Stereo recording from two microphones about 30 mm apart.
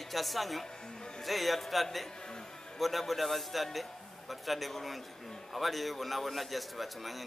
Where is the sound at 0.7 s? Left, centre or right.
Left.